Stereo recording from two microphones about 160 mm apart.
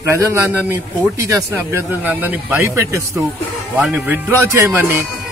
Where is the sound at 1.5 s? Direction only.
15° right (ahead or behind).